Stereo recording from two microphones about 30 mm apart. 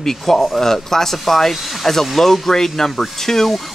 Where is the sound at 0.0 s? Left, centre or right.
Centre.